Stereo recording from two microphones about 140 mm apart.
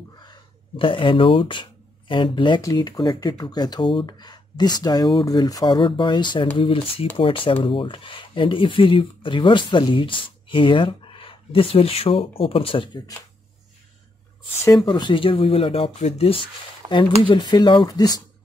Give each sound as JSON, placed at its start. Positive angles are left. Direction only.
{"t": 0.7, "sound": "speech", "side_deg": 40}
{"t": 14.9, "sound": "speech", "side_deg": 35}